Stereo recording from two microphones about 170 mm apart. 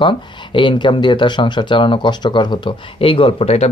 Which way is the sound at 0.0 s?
30° left (ahead or behind).